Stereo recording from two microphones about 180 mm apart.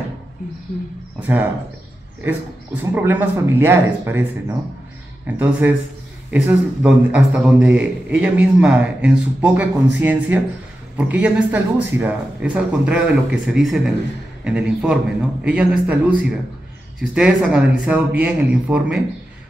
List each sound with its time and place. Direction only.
1.2 s a man's voice: 10° right (ahead or behind)
2.8 s a man's voice: 10° right (ahead or behind)